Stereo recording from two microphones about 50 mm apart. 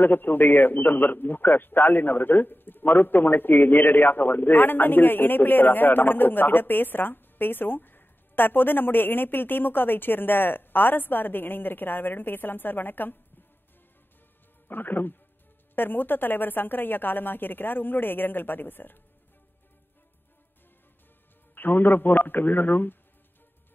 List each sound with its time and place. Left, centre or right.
0.0 s a man's voice: left
14.7 s a man's voice: left
21.5 s a man's voice: left